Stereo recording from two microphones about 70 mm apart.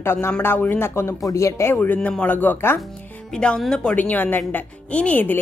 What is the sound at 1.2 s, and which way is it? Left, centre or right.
Speech, left.